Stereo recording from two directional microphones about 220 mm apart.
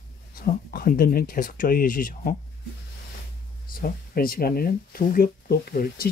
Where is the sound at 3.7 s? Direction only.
40° left (ahead or behind).